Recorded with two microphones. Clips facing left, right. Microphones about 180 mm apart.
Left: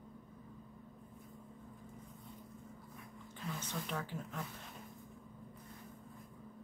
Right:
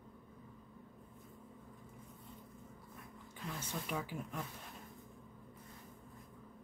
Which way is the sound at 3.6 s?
10° right (ahead or behind).